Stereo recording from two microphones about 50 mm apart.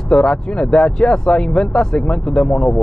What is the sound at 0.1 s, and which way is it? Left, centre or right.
Speech, centre.